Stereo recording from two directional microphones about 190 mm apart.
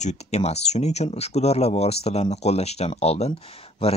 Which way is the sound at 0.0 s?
35° left (ahead or behind).